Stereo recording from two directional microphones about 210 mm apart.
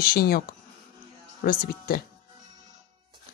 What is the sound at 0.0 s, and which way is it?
Speech, 45° left (ahead or behind).